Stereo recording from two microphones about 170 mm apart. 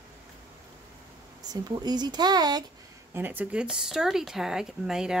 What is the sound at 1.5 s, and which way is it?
Speech, 25° right (ahead or behind).